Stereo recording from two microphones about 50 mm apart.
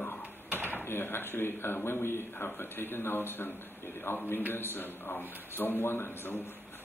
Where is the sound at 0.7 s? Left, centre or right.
Left.